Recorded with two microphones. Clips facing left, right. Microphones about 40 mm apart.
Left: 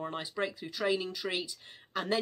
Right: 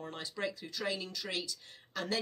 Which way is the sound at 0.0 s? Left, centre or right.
Left.